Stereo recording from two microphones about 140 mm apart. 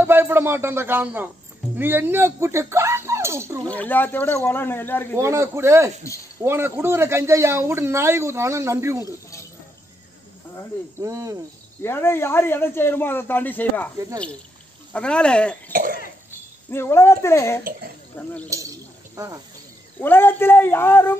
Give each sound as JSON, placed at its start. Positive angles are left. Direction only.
{"t": 0.0, "sound": "speech", "side_deg": -15}
{"t": 3.7, "sound": "speech", "side_deg": 10}
{"t": 5.1, "sound": "a man's voice", "side_deg": -20}
{"t": 11.0, "sound": "a man's voice", "side_deg": -20}
{"t": 11.8, "sound": "speech", "side_deg": 15}
{"t": 13.9, "sound": "a man's voice", "side_deg": -25}
{"t": 14.9, "sound": "speech", "side_deg": 10}
{"t": 15.7, "sound": "cough", "side_deg": -90}
{"t": 16.7, "sound": "speech", "side_deg": 20}
{"t": 18.5, "sound": "a sound", "side_deg": -25}
{"t": 20.0, "sound": "speech", "side_deg": 15}